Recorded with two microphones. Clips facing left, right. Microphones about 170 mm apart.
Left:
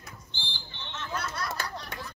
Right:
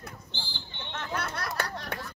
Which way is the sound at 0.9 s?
60° right (ahead or behind).